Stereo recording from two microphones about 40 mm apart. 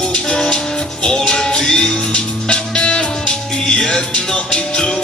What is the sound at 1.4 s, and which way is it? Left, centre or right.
Music, centre.